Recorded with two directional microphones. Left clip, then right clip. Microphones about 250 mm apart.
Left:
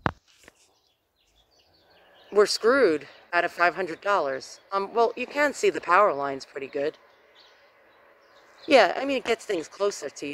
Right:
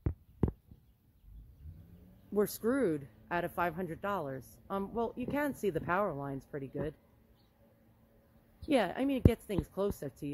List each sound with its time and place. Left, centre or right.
2.3 s speech: centre
8.6 s speech: centre